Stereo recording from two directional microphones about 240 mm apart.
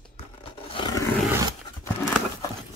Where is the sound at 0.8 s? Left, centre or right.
Left.